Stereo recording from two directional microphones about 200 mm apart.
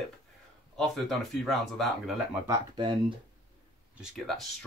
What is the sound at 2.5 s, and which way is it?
Speech, 25° right (ahead or behind).